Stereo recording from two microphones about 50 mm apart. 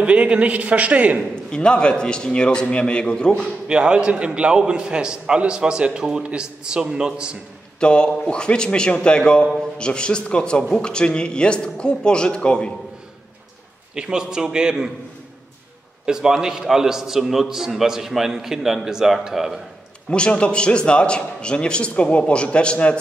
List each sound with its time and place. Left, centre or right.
0.0 s a man's voice: right
1.3 s a man's voice: centre
3.6 s a man's voice: centre
7.8 s a man's voice: centre
13.9 s a man's voice: centre
16.1 s a man's voice: centre
20.1 s a man's voice: left